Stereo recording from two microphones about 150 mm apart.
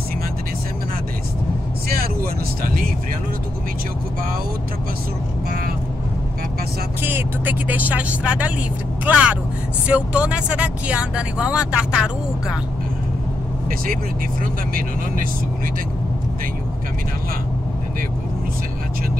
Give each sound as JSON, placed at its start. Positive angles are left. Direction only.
{"t": 7.0, "sound": "speech", "side_deg": -15}
{"t": 14.4, "sound": "speech", "side_deg": -65}